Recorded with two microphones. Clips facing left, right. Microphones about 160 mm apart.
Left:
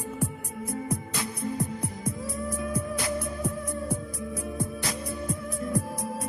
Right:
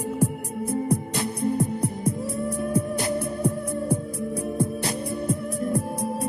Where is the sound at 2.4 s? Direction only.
30° right (ahead or behind).